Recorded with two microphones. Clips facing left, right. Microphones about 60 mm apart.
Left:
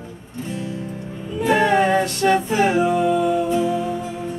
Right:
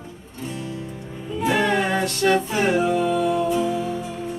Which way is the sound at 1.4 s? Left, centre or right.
Centre.